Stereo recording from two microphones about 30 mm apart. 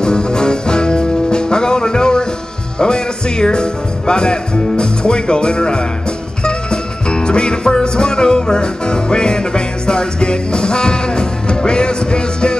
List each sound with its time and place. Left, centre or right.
0.0 s music: left
2.8 s speech: left
6.4 s music: left